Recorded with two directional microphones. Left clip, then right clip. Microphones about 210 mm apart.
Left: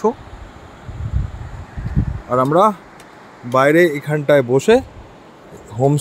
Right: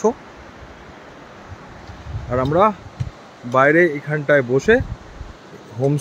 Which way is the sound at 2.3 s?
15° left (ahead or behind).